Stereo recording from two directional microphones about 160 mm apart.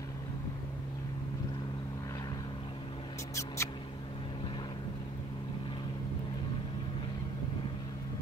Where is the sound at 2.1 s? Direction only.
20° left (ahead or behind).